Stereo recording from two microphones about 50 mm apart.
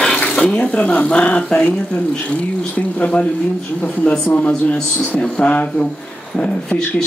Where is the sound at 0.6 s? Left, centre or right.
Left.